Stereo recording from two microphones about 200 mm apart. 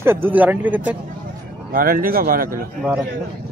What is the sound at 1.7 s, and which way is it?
Speech, 45° right (ahead or behind).